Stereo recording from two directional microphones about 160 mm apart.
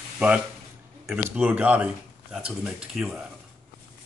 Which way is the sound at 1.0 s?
10° right (ahead or behind).